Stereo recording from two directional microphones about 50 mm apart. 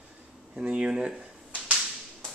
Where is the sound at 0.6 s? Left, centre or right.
Right.